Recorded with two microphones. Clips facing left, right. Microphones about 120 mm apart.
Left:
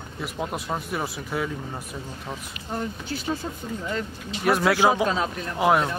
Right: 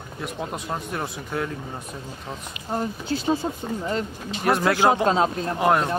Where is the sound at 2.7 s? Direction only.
30° right (ahead or behind).